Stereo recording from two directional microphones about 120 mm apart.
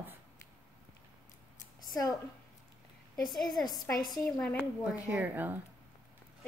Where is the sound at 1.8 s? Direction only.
30° left (ahead or behind).